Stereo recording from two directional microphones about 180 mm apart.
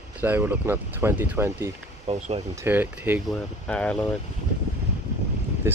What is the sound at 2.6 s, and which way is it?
Speech, 10° right (ahead or behind).